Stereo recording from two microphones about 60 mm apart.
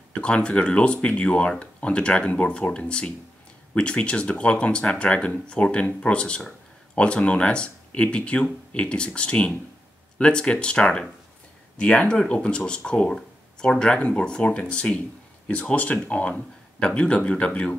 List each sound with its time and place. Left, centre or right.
0.1 s speech: centre